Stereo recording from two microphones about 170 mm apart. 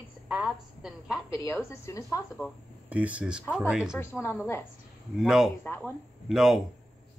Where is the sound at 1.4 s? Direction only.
15° left (ahead or behind).